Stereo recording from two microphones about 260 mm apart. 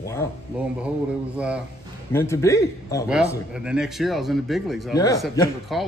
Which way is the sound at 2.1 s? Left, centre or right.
Centre.